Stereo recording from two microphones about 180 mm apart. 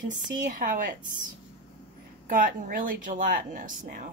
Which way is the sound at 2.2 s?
50° right (ahead or behind).